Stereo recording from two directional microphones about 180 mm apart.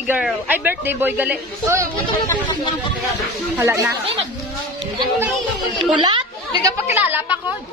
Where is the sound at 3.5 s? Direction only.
15° right (ahead or behind).